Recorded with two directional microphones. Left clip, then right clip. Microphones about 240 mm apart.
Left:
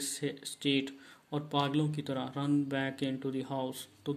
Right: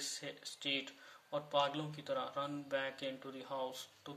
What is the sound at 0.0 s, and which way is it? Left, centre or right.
Speech, left.